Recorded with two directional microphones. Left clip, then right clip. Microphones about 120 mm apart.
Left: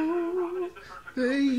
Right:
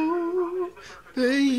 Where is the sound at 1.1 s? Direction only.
30° right (ahead or behind).